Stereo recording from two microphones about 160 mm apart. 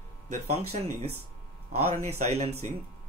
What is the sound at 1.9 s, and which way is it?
Speech, 45° right (ahead or behind).